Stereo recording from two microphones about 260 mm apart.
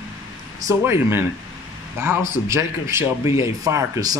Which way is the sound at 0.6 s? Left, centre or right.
Centre.